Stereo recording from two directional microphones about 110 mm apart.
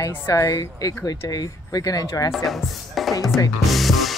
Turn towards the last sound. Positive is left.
turn(degrees=0)  # may be behind; listen again after turning